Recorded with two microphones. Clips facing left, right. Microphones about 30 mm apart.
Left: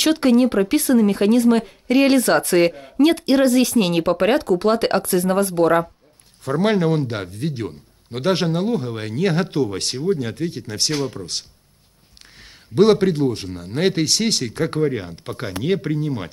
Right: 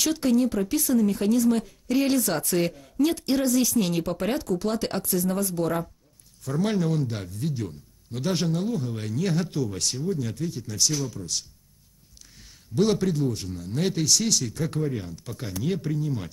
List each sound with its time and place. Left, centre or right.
0.0 s speech: left
12.7 s speech: left